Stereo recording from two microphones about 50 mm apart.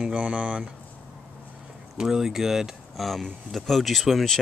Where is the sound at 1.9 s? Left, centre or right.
Centre.